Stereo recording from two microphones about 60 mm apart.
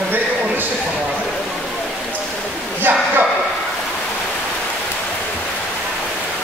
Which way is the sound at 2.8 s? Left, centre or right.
Right.